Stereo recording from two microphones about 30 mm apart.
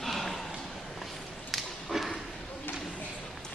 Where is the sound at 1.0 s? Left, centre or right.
Centre.